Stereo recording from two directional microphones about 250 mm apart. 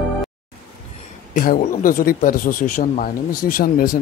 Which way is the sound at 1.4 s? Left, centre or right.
Left.